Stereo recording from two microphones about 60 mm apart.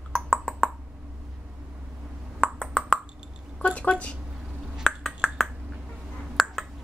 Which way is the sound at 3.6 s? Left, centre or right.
Left.